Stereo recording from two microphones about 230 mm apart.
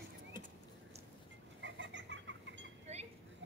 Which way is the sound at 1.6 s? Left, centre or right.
Right.